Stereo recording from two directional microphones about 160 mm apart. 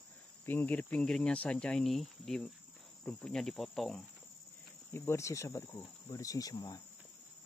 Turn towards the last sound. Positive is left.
turn(degrees=25)  # may be behind; listen again after turning